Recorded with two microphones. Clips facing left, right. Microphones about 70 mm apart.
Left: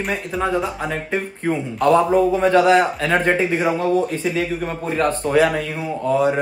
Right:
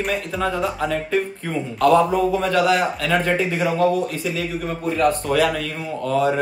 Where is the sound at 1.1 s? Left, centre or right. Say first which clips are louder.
Left 1 dB; left.